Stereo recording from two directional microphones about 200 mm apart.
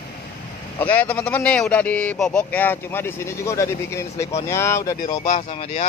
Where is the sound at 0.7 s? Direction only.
10° left (ahead or behind).